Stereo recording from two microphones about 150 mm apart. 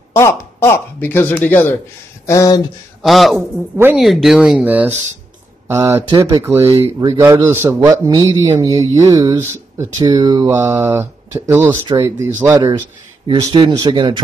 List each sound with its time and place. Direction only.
0.1 s speech: 15° left (ahead or behind)
2.2 s speech: 25° left (ahead or behind)
3.0 s speech: centre (ahead or behind)
3.7 s speech: 15° right (ahead or behind)
4.0 s speech: centre (ahead or behind); by 6.0 s 20° right (ahead or behind)
6.0 s mantra: 30° right (ahead or behind)
6.6 s speech: 35° right (ahead or behind)
7.1 s speech: 20° right (ahead or behind)
8.2 s mantra: 20° right (ahead or behind)
9.4 s speech: 15° right (ahead or behind)
10.0 s mantra: 30° right (ahead or behind)
10.6 s speech: 15° right (ahead or behind)
12.0 s mantra: 15° right (ahead or behind)
13.3 s speech: 30° right (ahead or behind)